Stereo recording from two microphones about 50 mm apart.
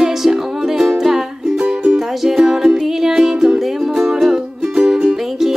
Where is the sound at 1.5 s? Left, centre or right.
Centre.